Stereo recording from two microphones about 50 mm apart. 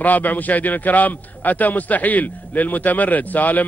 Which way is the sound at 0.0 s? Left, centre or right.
Left.